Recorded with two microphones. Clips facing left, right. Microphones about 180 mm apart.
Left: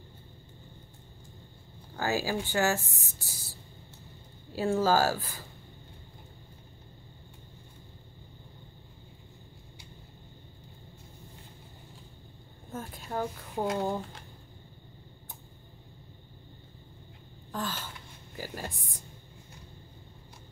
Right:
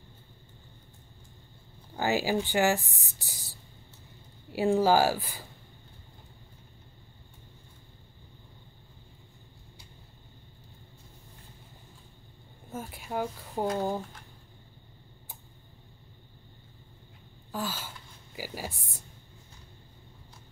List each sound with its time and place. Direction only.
2.0 s speech: 15° right (ahead or behind)
4.5 s speech: 15° right (ahead or behind)
12.7 s speech: 10° right (ahead or behind)
17.5 s a sound: 5° right (ahead or behind)